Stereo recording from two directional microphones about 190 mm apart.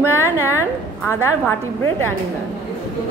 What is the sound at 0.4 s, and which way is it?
Speech, 15° left (ahead or behind).